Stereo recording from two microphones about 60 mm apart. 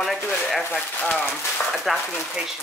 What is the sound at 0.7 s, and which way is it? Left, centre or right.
Speech, centre.